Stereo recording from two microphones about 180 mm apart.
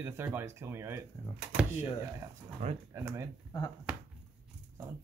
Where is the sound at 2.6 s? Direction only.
40° right (ahead or behind).